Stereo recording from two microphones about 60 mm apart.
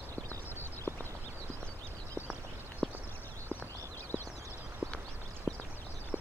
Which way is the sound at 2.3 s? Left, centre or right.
Centre.